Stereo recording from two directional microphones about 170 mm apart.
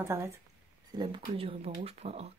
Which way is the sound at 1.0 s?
30° right (ahead or behind).